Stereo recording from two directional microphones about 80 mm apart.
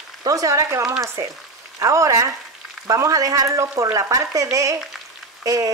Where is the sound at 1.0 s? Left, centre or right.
Right.